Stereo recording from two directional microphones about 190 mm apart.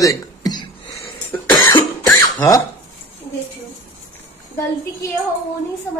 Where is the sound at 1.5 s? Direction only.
25° left (ahead or behind).